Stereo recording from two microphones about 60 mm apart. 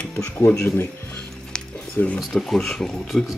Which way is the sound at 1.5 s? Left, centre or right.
Centre.